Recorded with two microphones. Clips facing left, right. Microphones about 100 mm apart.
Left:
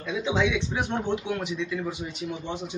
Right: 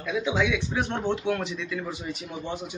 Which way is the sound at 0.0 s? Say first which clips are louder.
Even; 25° left (ahead or behind).